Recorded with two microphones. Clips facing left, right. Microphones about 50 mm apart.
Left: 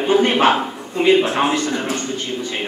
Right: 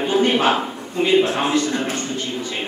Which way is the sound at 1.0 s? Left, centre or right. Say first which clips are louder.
Left 2 dB; left.